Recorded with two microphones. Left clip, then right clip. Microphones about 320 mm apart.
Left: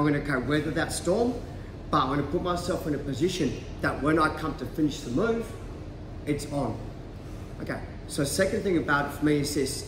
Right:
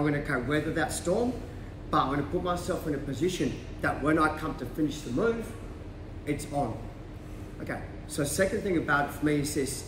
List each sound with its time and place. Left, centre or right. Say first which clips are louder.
0.0 s a man's voice: left 2 dB; centre
7.6 s a man's voice: left 2 dB; centre